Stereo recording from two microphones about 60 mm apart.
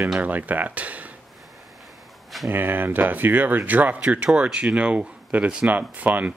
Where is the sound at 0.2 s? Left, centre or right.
Right.